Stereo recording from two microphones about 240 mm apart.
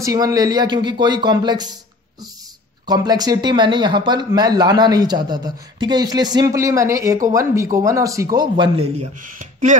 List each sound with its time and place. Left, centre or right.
0.0 s speech: centre
2.9 s speech: centre
9.4 s a sound: right